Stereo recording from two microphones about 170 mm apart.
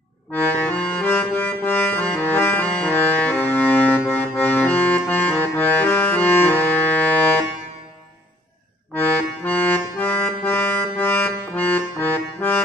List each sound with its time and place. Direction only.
0.8 s accordion: 10° left (ahead or behind)
8.9 s accordion: 10° left (ahead or behind)